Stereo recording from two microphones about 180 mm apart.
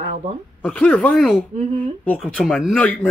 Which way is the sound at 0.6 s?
5° left (ahead or behind).